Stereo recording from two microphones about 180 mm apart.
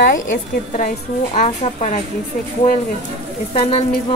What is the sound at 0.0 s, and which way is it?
A woman's voice, 50° left (ahead or behind).